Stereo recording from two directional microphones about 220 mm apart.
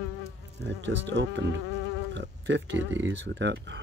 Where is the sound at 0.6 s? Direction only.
55° right (ahead or behind).